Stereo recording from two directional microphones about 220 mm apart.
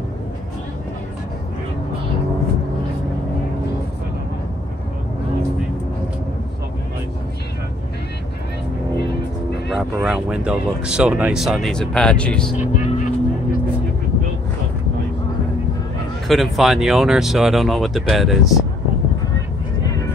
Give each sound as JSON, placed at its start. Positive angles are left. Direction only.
{"t": 9.7, "sound": "speech", "side_deg": 0}
{"t": 12.5, "sound": "vehicle", "side_deg": 35}
{"t": 16.3, "sound": "speech", "side_deg": 0}